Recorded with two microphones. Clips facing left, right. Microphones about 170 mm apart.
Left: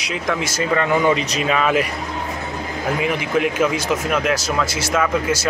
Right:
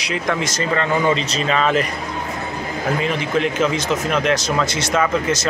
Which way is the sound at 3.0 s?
10° left (ahead or behind).